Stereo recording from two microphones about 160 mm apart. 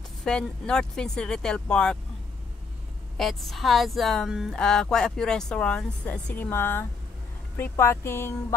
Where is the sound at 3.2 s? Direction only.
Centre (ahead or behind).